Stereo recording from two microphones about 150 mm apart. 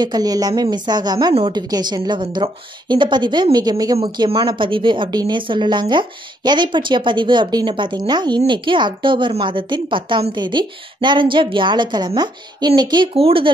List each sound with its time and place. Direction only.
0.0 s a woman's voice: 25° right (ahead or behind)